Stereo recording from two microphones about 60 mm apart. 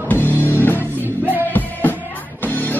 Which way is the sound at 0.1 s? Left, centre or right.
Left.